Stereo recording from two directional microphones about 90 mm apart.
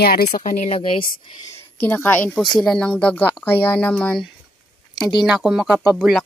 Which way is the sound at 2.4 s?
5° left (ahead or behind).